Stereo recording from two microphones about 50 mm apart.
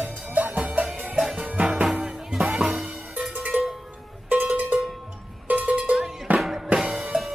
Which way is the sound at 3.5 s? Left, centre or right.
Right.